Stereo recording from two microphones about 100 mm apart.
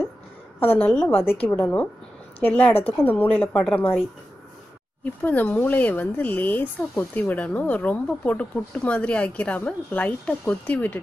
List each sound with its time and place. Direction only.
0.7 s a woman's voice: 20° left (ahead or behind)
5.0 s speech: 15° left (ahead or behind)